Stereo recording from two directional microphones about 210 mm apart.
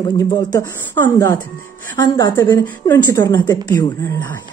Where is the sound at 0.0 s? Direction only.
20° left (ahead or behind).